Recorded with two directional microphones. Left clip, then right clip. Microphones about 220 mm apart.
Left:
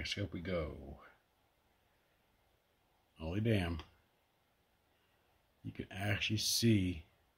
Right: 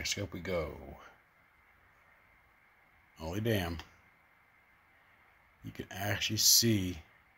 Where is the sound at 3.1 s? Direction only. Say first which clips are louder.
Right 3 dB; 20° left (ahead or behind).